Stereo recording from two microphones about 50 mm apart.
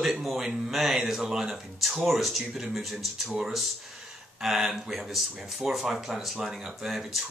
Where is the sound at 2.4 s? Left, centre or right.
Centre.